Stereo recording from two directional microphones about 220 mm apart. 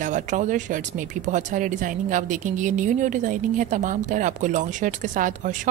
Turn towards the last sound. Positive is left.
turn(degrees=-35)  # may be behind; listen again after turning